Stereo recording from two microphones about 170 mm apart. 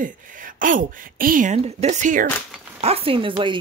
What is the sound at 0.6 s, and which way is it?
Speech, 50° right (ahead or behind).